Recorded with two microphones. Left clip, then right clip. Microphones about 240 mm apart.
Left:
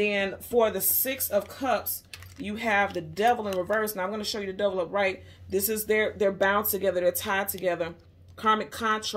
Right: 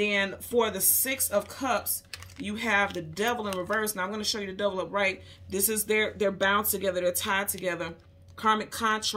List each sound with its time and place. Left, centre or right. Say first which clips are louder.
0.0 s speech: even; centre